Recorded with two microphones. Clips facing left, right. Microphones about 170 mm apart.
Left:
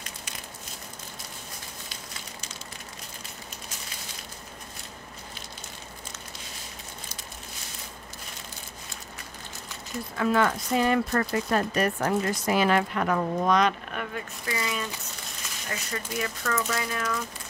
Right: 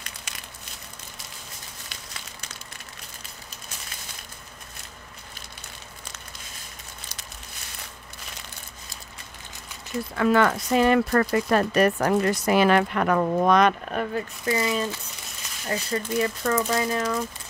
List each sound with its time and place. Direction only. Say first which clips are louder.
10.1 s speech: right 4 dB; 70° right (ahead or behind)
13.9 s speech: right 7 dB; 35° right (ahead or behind)